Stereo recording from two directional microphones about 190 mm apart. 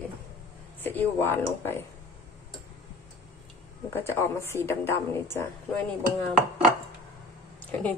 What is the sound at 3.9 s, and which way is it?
Speech, 10° left (ahead or behind).